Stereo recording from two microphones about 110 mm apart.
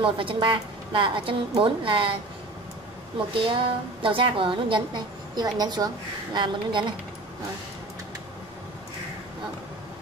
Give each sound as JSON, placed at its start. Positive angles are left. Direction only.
{"t": 0.0, "sound": "a woman's voice", "side_deg": -50}
{"t": 3.3, "sound": "a woman's voice", "side_deg": -50}